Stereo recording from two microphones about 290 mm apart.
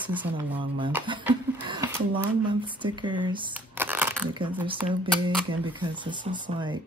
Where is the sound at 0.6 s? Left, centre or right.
Centre.